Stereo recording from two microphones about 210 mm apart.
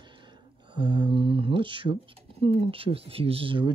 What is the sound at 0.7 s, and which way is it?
Speech, 20° right (ahead or behind).